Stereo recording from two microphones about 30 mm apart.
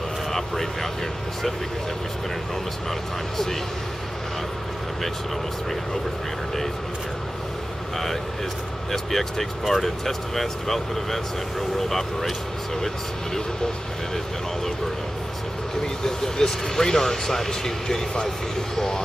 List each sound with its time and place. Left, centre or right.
8.9 s speech: centre
16.0 s speech: centre